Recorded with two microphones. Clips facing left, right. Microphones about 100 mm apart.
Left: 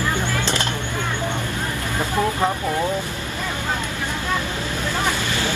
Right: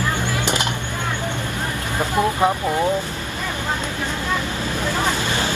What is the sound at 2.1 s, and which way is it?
Vehicle, 15° right (ahead or behind).